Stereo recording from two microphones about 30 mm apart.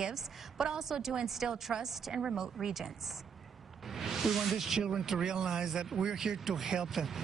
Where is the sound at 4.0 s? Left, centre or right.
Centre.